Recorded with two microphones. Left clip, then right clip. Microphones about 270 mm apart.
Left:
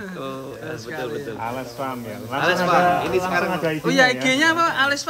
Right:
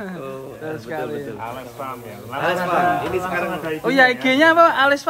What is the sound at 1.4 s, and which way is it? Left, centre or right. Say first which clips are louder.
Speech: left 2 dB; left.